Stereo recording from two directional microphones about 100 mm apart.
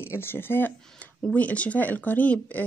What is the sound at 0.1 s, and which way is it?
Speech, 20° left (ahead or behind).